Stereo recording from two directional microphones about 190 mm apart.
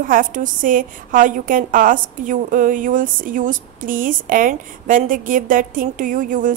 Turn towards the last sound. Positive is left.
turn(degrees=-45)  # may be behind; listen again after turning